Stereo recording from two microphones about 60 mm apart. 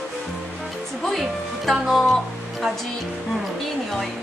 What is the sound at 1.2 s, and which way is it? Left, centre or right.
Speech, centre.